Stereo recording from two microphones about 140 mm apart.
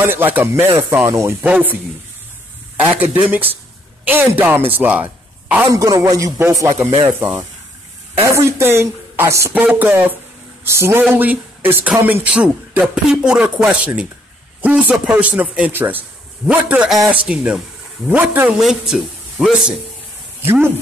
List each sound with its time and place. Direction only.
0.0 s a man's voice: 15° right (ahead or behind)
2.8 s a man's voice: 10° right (ahead or behind)
5.7 s a man's voice: 25° right (ahead or behind)
18.6 s a man's voice: centre (ahead or behind)
20.4 s a man's voice: 15° right (ahead or behind)